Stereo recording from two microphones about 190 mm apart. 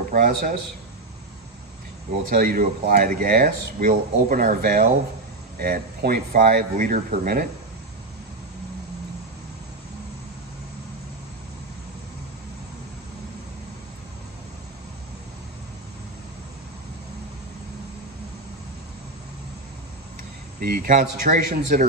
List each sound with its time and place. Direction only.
0.1 s speech: 45° right (ahead or behind)
2.2 s speech: 50° right (ahead or behind)
20.5 s speech: 50° right (ahead or behind)